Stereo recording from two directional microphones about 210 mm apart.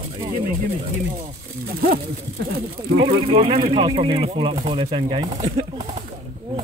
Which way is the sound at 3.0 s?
25° right (ahead or behind).